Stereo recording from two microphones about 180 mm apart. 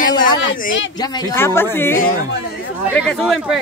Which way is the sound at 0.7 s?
90° left.